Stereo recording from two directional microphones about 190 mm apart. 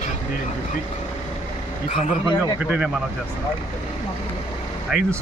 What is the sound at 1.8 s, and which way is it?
Speech, 40° left (ahead or behind).